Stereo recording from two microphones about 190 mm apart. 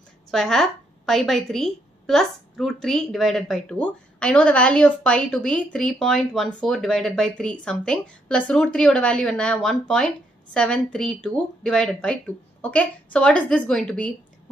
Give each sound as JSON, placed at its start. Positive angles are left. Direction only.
{"t": 0.3, "sound": "a woman's voice", "side_deg": 0}